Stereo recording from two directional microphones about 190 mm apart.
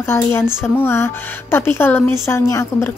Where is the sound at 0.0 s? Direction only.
15° left (ahead or behind).